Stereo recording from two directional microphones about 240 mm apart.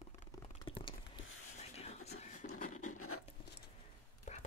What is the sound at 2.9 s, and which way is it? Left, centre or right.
Writing, left.